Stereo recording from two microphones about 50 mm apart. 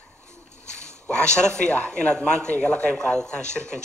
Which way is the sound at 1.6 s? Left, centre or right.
Left.